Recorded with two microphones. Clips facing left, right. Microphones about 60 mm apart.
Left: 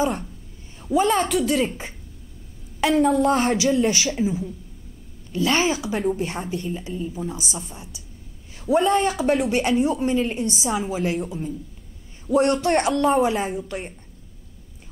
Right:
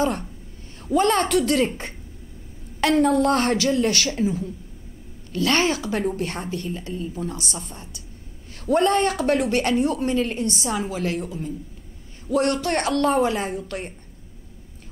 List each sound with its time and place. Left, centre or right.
0.0 s a woman's voice: centre
12.3 s a woman's voice: centre
12.6 s speech: left
12.9 s a woman's voice: centre